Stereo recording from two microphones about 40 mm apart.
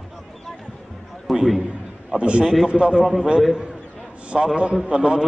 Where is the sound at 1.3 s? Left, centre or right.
Centre.